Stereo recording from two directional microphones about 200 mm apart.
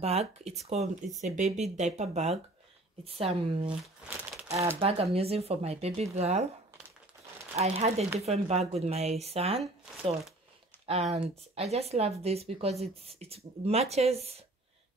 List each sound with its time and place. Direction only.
0.0 s a woman's voice: 30° right (ahead or behind)
3.8 s crumpling: 5° right (ahead or behind)
4.7 s speech: 30° right (ahead or behind)
7.5 s speech: 30° right (ahead or behind)
10.9 s speech: 30° right (ahead or behind)